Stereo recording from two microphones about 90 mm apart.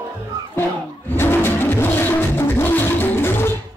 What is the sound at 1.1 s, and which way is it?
Music, 25° left (ahead or behind).